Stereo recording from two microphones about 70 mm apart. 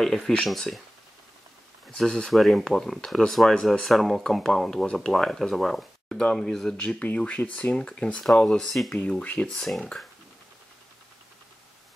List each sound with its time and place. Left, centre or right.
0.0 s speech: centre
1.9 s speech: centre
9.2 s speech: centre
9.5 s speech: centre